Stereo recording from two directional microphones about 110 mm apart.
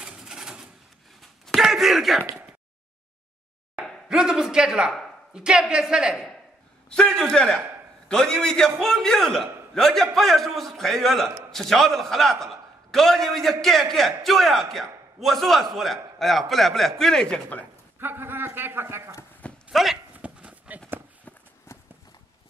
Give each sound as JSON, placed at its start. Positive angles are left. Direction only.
{"t": 0.0, "sound": "a sound", "side_deg": -5}
{"t": 3.8, "sound": "speech", "side_deg": -5}
{"t": 6.9, "sound": "a man's voice", "side_deg": 5}
{"t": 17.9, "sound": "a man's voice", "side_deg": -20}
{"t": 19.7, "sound": "a sound", "side_deg": -5}
{"t": 21.7, "sound": "walk", "side_deg": 25}